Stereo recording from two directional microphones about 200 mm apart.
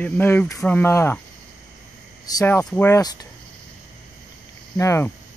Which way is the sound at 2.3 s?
15° left (ahead or behind).